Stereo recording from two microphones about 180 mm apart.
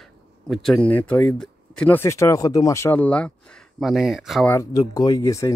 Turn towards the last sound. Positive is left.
turn(degrees=15)  # may be behind; listen again after turning